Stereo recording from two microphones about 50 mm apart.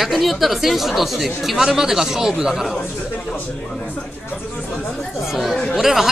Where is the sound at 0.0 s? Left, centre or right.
Centre.